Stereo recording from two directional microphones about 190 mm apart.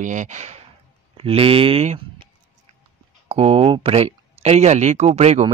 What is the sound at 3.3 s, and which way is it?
Speech, 30° right (ahead or behind).